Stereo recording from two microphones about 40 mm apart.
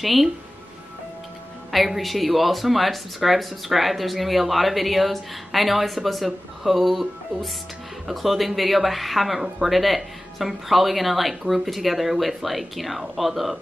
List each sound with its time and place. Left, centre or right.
0.0 s speech: centre
1.7 s speech: centre
8.1 s speech: centre